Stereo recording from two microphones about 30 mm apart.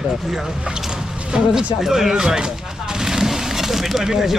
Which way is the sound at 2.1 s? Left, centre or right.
Right.